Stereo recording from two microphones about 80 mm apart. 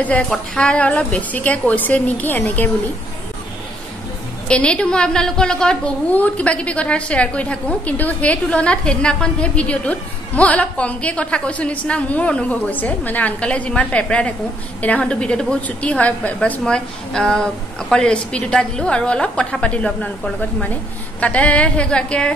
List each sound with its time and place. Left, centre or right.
0.6 s a woman's voice: centre
4.5 s a woman's voice: centre